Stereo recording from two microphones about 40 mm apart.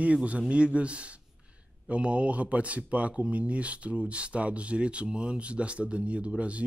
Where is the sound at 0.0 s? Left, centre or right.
Right.